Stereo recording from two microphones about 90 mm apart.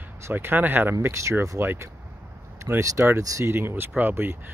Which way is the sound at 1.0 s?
35° right (ahead or behind).